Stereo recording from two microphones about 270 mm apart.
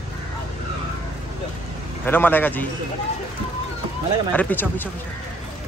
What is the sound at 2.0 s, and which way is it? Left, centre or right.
Speech, centre.